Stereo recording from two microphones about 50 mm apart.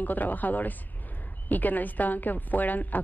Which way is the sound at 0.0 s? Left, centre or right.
Left.